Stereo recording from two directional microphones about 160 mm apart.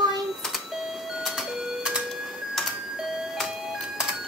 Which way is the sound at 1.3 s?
5° right (ahead or behind).